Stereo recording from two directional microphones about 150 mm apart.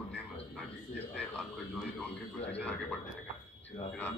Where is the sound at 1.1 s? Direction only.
10° left (ahead or behind).